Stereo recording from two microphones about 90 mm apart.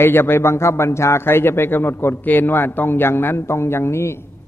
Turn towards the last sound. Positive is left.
turn(degrees=30)  # may be behind; listen again after turning